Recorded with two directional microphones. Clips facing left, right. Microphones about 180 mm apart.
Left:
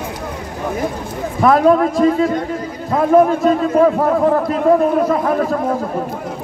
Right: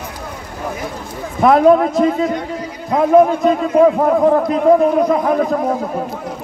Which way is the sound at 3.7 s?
15° right (ahead or behind).